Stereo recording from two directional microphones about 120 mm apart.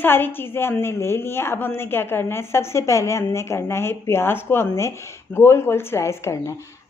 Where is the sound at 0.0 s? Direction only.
20° left (ahead or behind).